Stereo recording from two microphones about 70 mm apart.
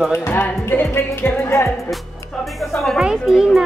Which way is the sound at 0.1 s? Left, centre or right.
Left.